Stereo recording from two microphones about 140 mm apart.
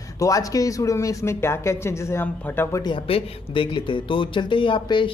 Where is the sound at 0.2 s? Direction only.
25° left (ahead or behind).